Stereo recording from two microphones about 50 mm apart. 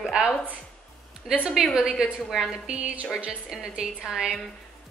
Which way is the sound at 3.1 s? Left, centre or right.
Right.